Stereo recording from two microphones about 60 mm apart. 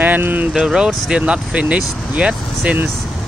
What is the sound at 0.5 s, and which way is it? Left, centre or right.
Speech, centre.